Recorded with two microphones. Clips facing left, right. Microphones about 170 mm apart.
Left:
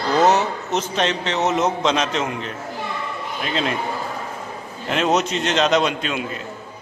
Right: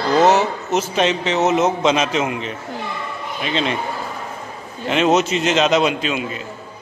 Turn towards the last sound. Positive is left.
turn(degrees=-5)  # may be behind; listen again after turning